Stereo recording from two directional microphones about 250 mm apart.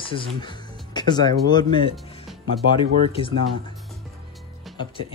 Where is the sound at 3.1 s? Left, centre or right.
Left.